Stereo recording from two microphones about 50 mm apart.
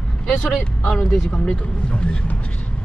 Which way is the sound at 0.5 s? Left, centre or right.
Centre.